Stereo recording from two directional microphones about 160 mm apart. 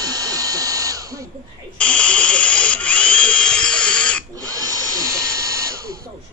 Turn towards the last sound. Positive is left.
turn(degrees=-20)  # may be behind; listen again after turning